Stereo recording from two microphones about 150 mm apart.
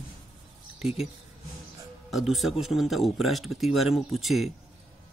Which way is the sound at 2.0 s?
Centre (ahead or behind).